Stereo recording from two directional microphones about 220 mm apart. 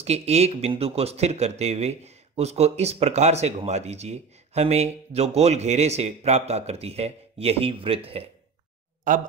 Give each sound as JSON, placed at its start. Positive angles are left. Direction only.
{"t": 0.0, "sound": "speech", "side_deg": -30}